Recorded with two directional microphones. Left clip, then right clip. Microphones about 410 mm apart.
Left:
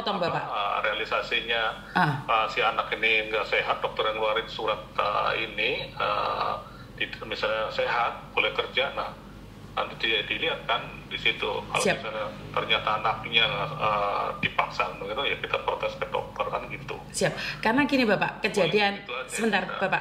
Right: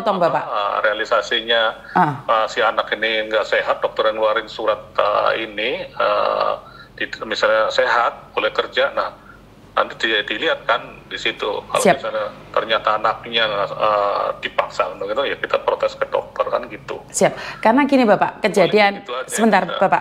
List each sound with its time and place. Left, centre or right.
0.0 s a man's voice: right
11.2 s a man's voice: right